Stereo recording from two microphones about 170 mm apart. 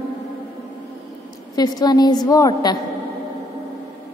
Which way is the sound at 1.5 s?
25° left (ahead or behind).